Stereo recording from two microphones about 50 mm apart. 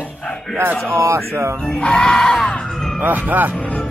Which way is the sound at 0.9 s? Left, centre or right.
Right.